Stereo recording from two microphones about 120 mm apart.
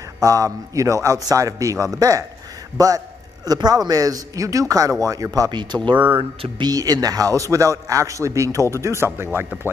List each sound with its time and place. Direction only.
0.2 s a man's voice: 25° right (ahead or behind); by 6.7 s 45° right (ahead or behind)
6.7 s speech: 30° right (ahead or behind)